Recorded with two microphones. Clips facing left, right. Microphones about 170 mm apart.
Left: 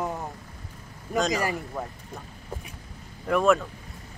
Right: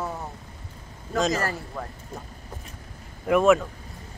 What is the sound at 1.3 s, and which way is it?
Speech, 15° left (ahead or behind).